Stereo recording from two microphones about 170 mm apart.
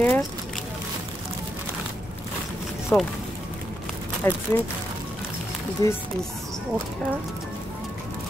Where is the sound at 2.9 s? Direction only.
10° left (ahead or behind).